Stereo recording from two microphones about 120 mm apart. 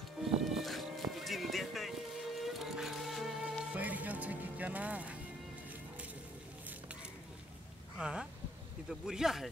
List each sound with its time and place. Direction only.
0.2 s music: centre (ahead or behind)
3.7 s music: 15° right (ahead or behind)
8.0 s a sound: 5° right (ahead or behind)
8.8 s speech: 5° right (ahead or behind)